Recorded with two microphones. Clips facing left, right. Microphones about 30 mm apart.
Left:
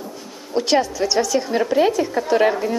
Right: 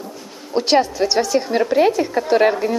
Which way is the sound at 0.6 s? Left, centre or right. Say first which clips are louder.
Right 2 dB; right.